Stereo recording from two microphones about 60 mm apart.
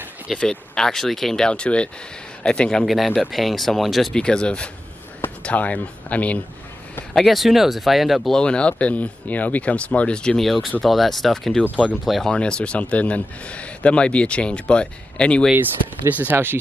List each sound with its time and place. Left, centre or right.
0.4 s speech: centre
2.8 s speech: centre
4.1 s speech: centre
7.2 s speech: centre
8.4 s speech: centre
10.4 s speech: centre
12.3 s speech: centre
16.1 s speech: right